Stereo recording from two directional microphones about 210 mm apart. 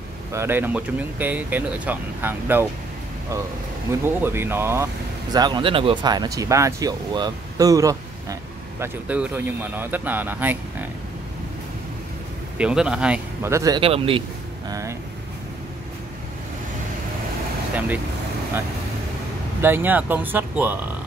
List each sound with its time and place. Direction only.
0.3 s speech: 10° right (ahead or behind)
3.9 s speech: 10° right (ahead or behind)
12.5 s speech: 5° right (ahead or behind); by 14.2 s 25° right (ahead or behind)
14.7 s speech: 15° right (ahead or behind)
17.7 s speech: 10° right (ahead or behind)
19.6 s speech: 10° right (ahead or behind)